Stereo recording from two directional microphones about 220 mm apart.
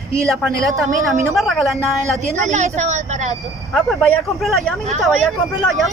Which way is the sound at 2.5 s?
30° right (ahead or behind).